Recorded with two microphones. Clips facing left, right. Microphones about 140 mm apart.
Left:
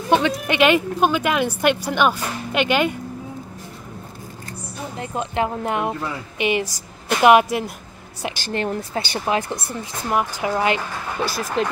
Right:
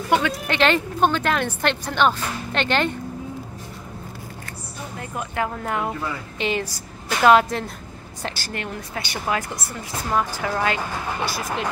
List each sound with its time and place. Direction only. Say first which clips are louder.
0.1 s speech: left 3 dB; 20° left (ahead or behind)
0.6 s speech: left 2 dB; 10° left (ahead or behind)
4.9 s speech: left 4 dB; 25° left (ahead or behind)
8.5 s speech: left 7 dB; 30° left (ahead or behind)
11.6 s speech: left 7 dB; 35° left (ahead or behind)